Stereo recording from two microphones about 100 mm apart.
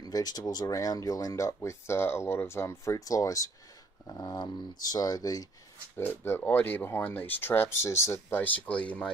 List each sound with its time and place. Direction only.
0.0 s speech: 40° left (ahead or behind)
4.1 s speech: 45° left (ahead or behind)
5.9 s speech: 25° left (ahead or behind)